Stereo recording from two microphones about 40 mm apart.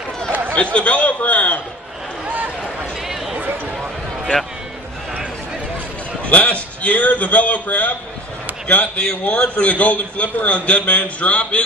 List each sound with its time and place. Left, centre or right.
0.5 s a man's voice: left
2.2 s a sound: right
4.3 s a man's voice: left
6.2 s a man's voice: left